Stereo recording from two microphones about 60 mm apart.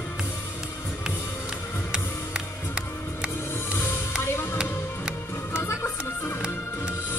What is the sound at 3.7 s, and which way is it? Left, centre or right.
Music, left.